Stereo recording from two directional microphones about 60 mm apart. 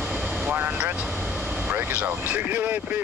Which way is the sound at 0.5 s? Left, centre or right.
Right.